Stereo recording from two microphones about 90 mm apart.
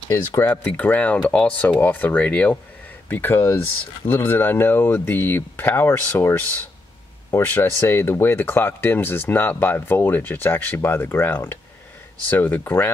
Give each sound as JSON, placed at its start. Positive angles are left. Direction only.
{"t": 0.4, "sound": "speech", "side_deg": 15}
{"t": 7.4, "sound": "speech", "side_deg": 25}